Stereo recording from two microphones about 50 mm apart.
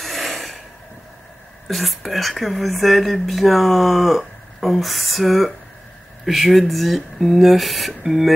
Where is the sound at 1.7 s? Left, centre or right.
Centre.